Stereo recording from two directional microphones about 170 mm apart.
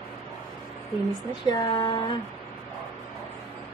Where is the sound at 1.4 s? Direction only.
25° left (ahead or behind).